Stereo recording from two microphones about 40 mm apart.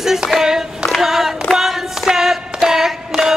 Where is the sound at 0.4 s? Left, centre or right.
Centre.